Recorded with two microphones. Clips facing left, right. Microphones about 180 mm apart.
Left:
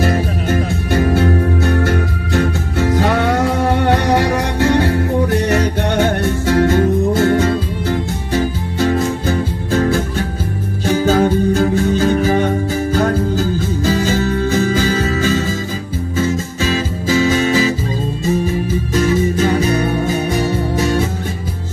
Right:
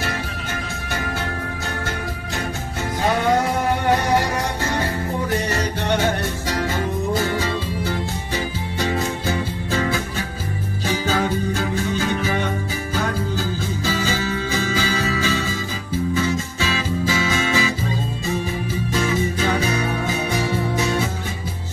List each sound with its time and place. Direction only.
0.0 s music: 50° left (ahead or behind)
1.9 s music: 70° left (ahead or behind)
6.4 s music: 55° left (ahead or behind)
9.7 s music: 50° left (ahead or behind)
18.9 s music: 40° left (ahead or behind)